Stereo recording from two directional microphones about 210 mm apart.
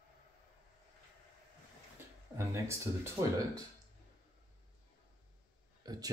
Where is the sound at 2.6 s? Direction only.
15° right (ahead or behind).